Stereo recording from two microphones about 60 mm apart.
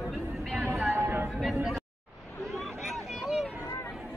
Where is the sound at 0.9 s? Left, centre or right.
Right.